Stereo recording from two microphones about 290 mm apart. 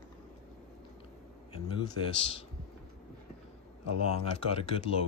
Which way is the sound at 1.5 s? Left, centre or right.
Centre.